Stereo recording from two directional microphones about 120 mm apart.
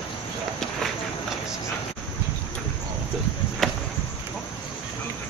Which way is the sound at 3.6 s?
Centre (ahead or behind).